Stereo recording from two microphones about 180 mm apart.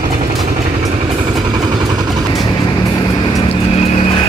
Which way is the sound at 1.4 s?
25° right (ahead or behind).